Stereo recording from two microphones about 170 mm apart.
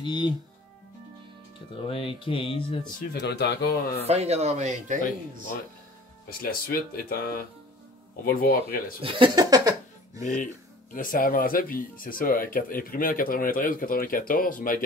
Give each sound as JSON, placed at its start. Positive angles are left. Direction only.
{"t": 0.0, "sound": "speech", "side_deg": 25}
{"t": 1.9, "sound": "speech", "side_deg": 30}
{"t": 3.0, "sound": "speech", "side_deg": 80}
{"t": 4.0, "sound": "speech", "side_deg": -40}
{"t": 6.4, "sound": "speech", "side_deg": 60}
{"t": 9.0, "sound": "speech", "side_deg": -25}
{"t": 10.2, "sound": "speech", "side_deg": 50}